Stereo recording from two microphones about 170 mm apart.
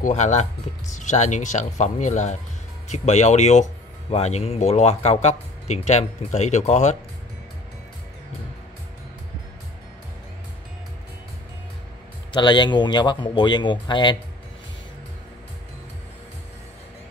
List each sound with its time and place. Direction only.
0.0 s speech: 45° left (ahead or behind)
12.3 s speech: 25° left (ahead or behind)